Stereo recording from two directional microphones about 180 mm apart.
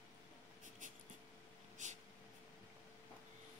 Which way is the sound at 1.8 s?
40° right (ahead or behind).